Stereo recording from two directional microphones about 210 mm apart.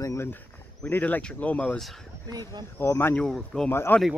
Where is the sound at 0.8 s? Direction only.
10° left (ahead or behind).